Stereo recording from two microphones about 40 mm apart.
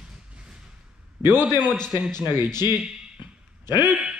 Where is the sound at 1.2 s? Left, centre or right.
Right.